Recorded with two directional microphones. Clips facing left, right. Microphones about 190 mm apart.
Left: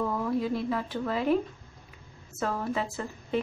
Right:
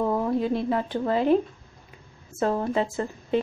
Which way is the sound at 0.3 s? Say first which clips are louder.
Right 4 dB; 25° right (ahead or behind).